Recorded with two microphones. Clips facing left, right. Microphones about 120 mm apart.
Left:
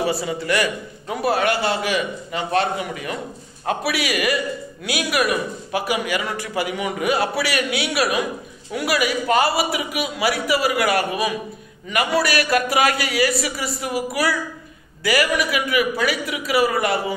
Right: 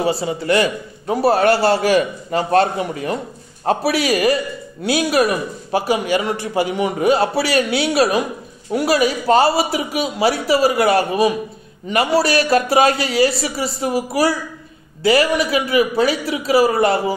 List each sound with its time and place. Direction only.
0.0 s a man's voice: 25° right (ahead or behind)